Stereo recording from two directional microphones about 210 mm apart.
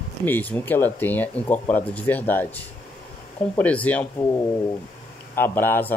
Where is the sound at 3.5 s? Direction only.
5° left (ahead or behind).